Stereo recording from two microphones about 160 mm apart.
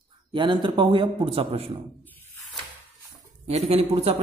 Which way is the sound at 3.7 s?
40° right (ahead or behind).